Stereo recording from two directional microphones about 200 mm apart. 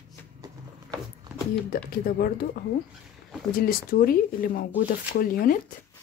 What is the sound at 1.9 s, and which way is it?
Speech, 45° left (ahead or behind).